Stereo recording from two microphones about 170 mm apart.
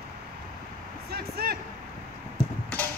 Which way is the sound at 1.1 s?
65° right (ahead or behind).